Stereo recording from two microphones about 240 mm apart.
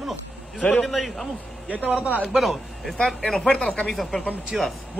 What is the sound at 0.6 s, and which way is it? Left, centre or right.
Speech, centre.